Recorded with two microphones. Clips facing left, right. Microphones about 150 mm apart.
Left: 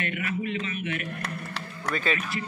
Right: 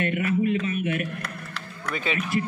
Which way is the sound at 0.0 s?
45° right (ahead or behind).